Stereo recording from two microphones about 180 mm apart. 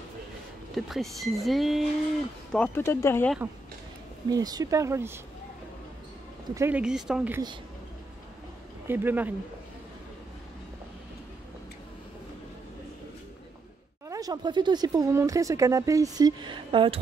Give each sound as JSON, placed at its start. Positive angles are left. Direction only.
{"t": 0.7, "sound": "speech", "side_deg": 0}
{"t": 4.3, "sound": "speech", "side_deg": -20}
{"t": 6.5, "sound": "speech", "side_deg": -15}
{"t": 6.8, "sound": "speech", "side_deg": -5}
{"t": 8.8, "sound": "speech", "side_deg": -10}
{"t": 14.0, "sound": "speech", "side_deg": -20}